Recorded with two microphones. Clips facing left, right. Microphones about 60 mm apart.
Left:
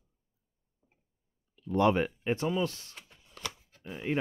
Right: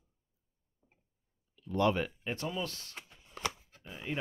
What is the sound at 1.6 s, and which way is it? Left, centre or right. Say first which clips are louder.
Speech: left 4 dB; left.